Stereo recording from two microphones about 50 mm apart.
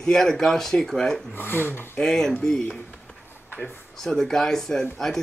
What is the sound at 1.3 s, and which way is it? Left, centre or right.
Speech, left.